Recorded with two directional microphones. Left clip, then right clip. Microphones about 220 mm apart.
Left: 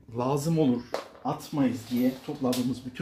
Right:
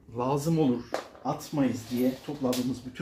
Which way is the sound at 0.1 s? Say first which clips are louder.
Even; 30° left (ahead or behind).